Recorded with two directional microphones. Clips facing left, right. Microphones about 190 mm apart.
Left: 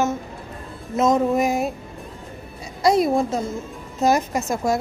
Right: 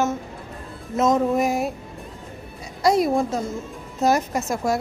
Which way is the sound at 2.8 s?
25° left (ahead or behind).